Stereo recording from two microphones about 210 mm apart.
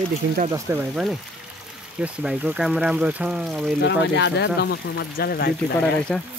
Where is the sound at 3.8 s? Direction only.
55° left (ahead or behind).